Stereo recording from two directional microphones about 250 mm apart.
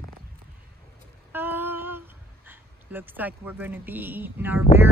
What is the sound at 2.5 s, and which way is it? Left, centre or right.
Speech, centre.